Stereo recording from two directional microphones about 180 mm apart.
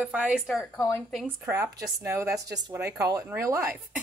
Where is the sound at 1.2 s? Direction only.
10° right (ahead or behind).